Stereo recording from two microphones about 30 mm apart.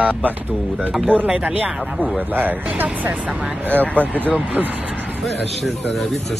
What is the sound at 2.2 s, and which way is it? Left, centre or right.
Speech, right.